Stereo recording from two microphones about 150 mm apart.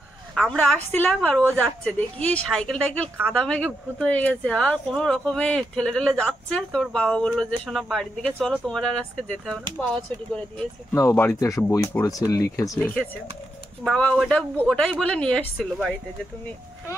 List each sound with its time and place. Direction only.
0.3 s speech: 5° left (ahead or behind)
11.0 s speech: 20° left (ahead or behind)
12.8 s speech: 10° left (ahead or behind)